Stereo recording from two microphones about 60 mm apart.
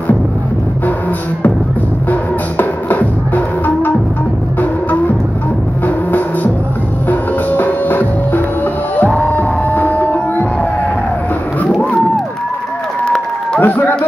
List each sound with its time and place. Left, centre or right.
2.0 s music: left
7.1 s music: left
13.6 s a sound: left